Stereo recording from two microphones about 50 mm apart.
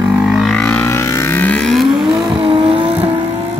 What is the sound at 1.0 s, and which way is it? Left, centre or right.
Vehicle, left.